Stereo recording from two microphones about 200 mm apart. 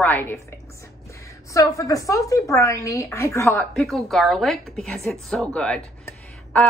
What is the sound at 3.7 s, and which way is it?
A woman's voice, centre (ahead or behind).